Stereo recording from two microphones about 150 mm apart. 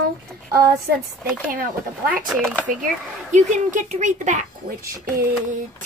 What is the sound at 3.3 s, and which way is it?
Speech, 55° right (ahead or behind).